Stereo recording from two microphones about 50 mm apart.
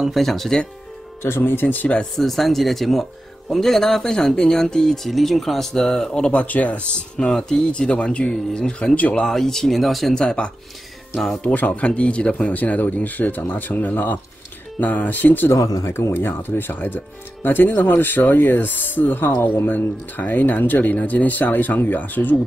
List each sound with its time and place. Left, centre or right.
0.0 s speech: centre
1.2 s speech: left
2.1 s speech: centre
6.3 s speech: left
7.0 s speech: centre
8.9 s speech: left
9.2 s speech: centre
10.1 s speech: centre
11.4 s speech: left
11.9 s speech: left
12.5 s speech: left
15.5 s speech: left
16.1 s speech: left